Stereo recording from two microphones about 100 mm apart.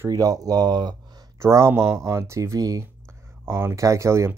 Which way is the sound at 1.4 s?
30° right (ahead or behind).